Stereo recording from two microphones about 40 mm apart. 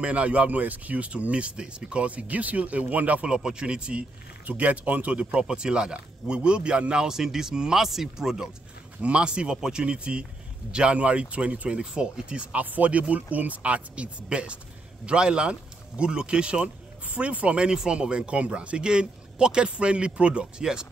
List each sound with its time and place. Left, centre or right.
0.0 s speech: right
3.3 s a man's voice: right
4.5 s speech: right
5.2 s a man's voice: right
9.0 s a man's voice: right
12.5 s a man's voice: right
17.6 s a man's voice: right